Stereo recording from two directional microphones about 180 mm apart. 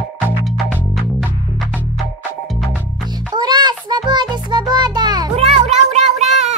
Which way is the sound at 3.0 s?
25° right (ahead or behind).